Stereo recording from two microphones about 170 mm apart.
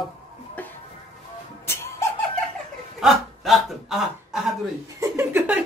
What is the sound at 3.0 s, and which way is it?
Snicker, centre (ahead or behind).